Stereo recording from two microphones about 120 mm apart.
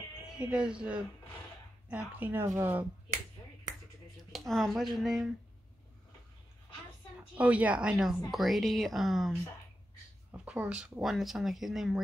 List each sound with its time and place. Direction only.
0.2 s speech: 10° right (ahead or behind)
4.3 s speech: centre (ahead or behind)
7.3 s speech: 10° right (ahead or behind)
10.3 s speech: 10° right (ahead or behind)